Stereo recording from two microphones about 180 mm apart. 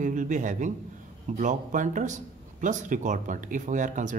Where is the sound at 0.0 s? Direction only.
45° right (ahead or behind).